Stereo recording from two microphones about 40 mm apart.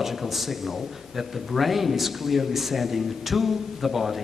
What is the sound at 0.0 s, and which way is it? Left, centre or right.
A man's voice, centre.